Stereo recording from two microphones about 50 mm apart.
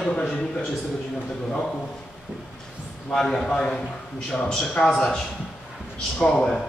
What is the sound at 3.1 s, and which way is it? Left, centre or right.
Speech, centre.